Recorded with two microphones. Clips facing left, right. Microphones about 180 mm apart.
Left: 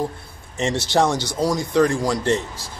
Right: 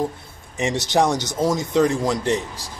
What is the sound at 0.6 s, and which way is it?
Speech, 15° right (ahead or behind).